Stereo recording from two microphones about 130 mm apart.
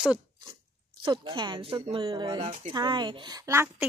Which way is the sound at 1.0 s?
35° right (ahead or behind).